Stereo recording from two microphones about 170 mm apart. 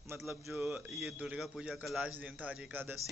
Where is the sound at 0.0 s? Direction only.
15° right (ahead or behind).